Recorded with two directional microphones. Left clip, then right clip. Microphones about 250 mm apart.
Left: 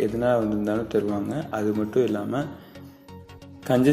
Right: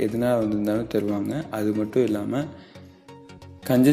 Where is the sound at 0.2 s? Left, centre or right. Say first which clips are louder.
Even; right.